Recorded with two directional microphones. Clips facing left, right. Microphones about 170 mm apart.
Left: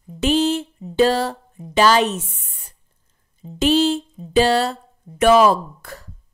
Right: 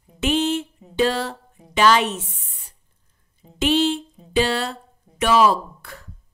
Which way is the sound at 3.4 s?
40° left (ahead or behind).